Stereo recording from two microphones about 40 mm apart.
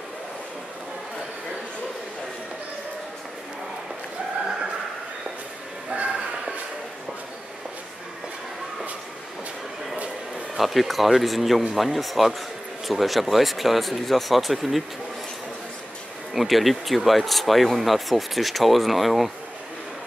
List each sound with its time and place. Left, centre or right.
10.6 s speech: centre
16.3 s speech: centre